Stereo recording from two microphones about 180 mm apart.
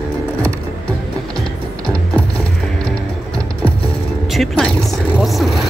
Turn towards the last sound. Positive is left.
turn(degrees=0)  # may be behind; listen again after turning